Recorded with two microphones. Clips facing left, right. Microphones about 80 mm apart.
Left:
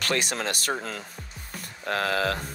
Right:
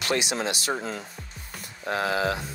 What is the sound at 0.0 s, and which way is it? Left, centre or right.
Speech, left.